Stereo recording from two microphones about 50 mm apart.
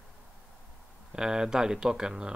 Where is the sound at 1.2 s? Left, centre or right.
Centre.